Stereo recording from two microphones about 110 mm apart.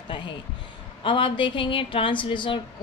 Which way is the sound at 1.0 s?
50° left (ahead or behind).